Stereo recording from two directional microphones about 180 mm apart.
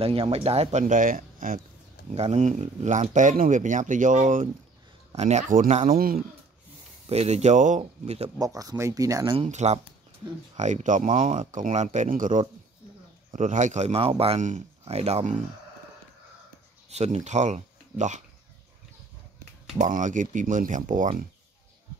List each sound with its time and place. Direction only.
0.0 s a man's voice: 30° right (ahead or behind); by 1.6 s 50° right (ahead or behind)
2.0 s speech: 35° right (ahead or behind); by 6.2 s 55° right (ahead or behind)
7.1 s a man's voice: 35° right (ahead or behind)
8.4 s speech: 20° right (ahead or behind)
9.4 s a man's voice: 40° right (ahead or behind)
16.9 s speech: 35° right (ahead or behind)
19.8 s speech: 45° right (ahead or behind)